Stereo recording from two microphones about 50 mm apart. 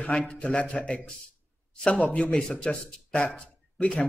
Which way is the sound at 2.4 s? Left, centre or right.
Centre.